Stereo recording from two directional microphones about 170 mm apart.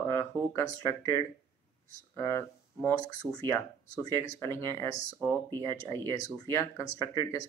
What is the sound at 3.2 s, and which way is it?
Speech, centre (ahead or behind).